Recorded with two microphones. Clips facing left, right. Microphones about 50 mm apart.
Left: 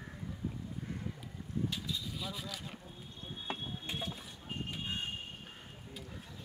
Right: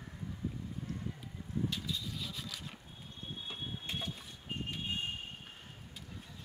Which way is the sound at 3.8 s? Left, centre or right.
Centre.